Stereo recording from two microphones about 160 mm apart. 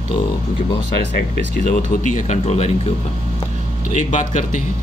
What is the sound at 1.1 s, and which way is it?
Speech, 70° left (ahead or behind).